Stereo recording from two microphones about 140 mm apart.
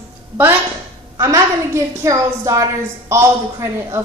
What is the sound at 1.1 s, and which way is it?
A man's voice, 20° right (ahead or behind).